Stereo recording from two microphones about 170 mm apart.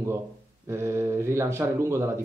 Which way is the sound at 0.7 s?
15° right (ahead or behind).